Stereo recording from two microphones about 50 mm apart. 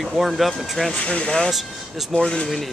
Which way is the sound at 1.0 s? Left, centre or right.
Left.